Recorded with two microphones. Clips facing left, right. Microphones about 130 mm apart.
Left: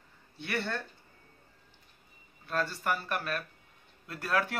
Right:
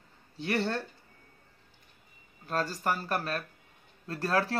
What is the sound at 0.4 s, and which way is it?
Speech, 35° right (ahead or behind).